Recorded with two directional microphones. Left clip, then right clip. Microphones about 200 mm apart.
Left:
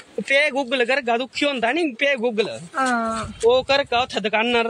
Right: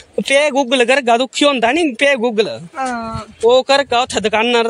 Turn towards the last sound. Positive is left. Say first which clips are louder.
# right 6 dB
turn(degrees=-50)  # may be behind; listen again after turning